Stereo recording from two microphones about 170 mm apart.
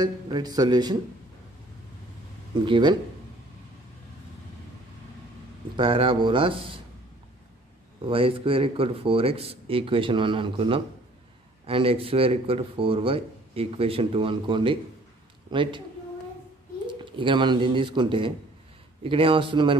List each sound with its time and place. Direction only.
0.0 s speech: 25° right (ahead or behind)
2.6 s speech: 25° right (ahead or behind)
5.8 s speech: 30° right (ahead or behind)
8.0 s speech: 30° right (ahead or behind)
17.0 s speech: 30° right (ahead or behind)